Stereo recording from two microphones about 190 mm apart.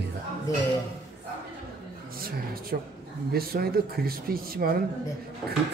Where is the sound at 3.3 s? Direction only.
50° right (ahead or behind).